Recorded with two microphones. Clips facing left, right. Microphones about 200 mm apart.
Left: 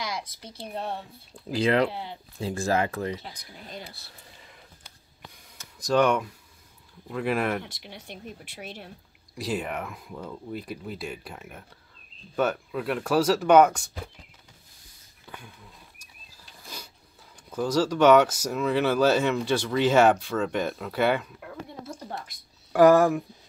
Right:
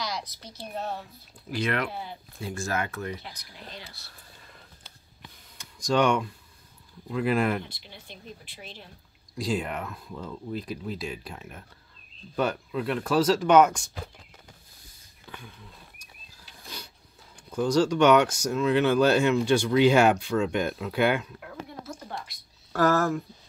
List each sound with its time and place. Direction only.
0.0 s speech: 25° left (ahead or behind)
5.6 s speech: 5° left (ahead or behind)
7.6 s speech: 70° left (ahead or behind)
9.4 s speech: 5° left (ahead or behind)
16.0 s a sound: 10° left (ahead or behind)
17.5 s speech: 5° left (ahead or behind)
22.7 s speech: 15° left (ahead or behind)